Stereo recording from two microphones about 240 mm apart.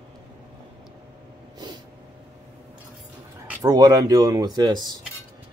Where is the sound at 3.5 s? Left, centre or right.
Centre.